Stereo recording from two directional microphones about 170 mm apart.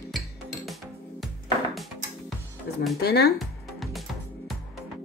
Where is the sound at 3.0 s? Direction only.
70° left (ahead or behind).